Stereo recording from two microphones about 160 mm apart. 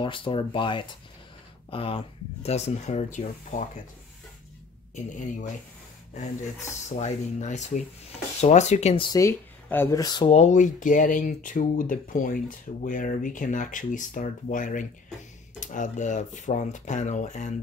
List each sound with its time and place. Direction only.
0.0 s speech: 30° left (ahead or behind); by 3.6 s 50° left (ahead or behind)
4.9 s speech: 50° left (ahead or behind)
6.9 s speech: 45° left (ahead or behind)
9.0 s speech: 25° left (ahead or behind)
10.3 s speech: 45° left (ahead or behind)